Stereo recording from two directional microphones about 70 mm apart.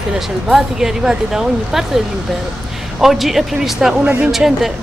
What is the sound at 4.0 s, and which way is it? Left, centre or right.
Speech, centre.